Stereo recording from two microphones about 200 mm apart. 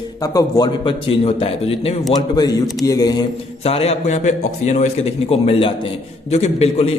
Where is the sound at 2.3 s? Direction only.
20° left (ahead or behind).